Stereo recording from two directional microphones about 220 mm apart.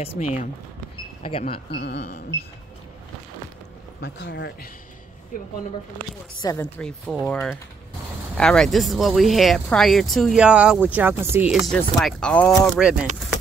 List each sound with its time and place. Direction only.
0.2 s speech: 40° left (ahead or behind)
1.7 s speech: 50° left (ahead or behind)
4.0 s speech: 50° left (ahead or behind)
6.4 s speech: 10° left (ahead or behind)